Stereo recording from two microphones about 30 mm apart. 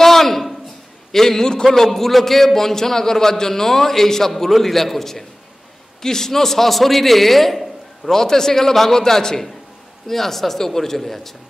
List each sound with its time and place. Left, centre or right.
0.0 s a sound: centre
1.1 s a man's voice: centre
8.1 s a man's voice: centre